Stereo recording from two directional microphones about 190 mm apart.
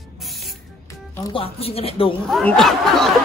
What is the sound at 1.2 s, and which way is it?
Speech, 25° left (ahead or behind).